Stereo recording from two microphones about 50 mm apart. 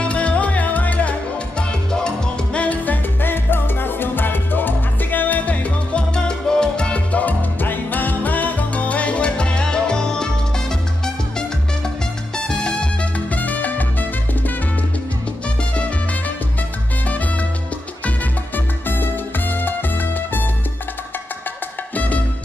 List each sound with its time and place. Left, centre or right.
0.0 s music: left
1.6 s salsa music: centre
6.1 s salsa music: centre
7.6 s salsa music: left; by 10.3 s centre
12.4 s music: centre
13.3 s music: left
18.9 s music: left